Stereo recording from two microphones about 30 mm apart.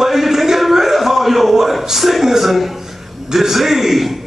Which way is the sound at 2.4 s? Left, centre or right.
Centre.